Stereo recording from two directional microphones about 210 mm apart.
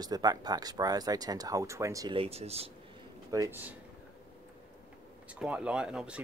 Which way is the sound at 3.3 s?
15° right (ahead or behind).